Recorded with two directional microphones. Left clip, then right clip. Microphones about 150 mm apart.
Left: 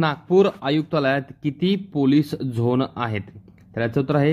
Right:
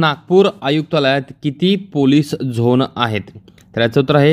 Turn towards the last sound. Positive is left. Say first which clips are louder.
# right 8 dB
turn(degrees=-35)  # may be behind; listen again after turning